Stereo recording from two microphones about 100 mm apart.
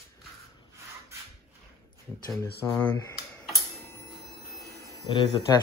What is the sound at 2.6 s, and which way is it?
Speech, 25° left (ahead or behind).